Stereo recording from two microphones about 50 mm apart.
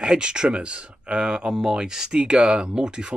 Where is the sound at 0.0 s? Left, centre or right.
Centre.